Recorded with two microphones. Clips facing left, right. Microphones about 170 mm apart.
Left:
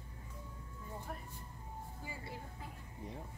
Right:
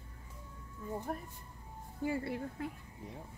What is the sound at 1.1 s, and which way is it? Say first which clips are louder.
Speech: right 7 dB; 45° right (ahead or behind).